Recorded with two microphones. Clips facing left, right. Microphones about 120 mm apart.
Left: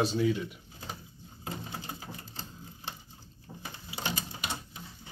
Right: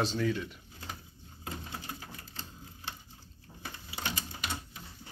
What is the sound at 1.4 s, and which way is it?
Typewriter, 25° left (ahead or behind).